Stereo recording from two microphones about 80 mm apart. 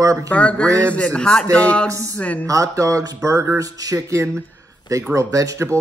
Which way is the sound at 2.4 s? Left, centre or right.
Right.